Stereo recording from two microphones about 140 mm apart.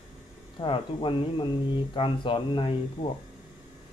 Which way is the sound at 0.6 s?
35° left (ahead or behind).